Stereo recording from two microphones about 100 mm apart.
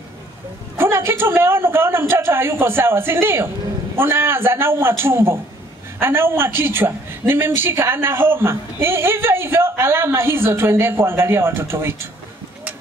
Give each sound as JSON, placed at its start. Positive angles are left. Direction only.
{"t": 0.7, "sound": "a man's voice", "side_deg": -25}